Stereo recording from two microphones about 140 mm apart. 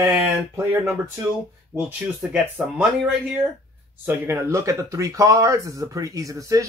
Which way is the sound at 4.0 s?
15° right (ahead or behind).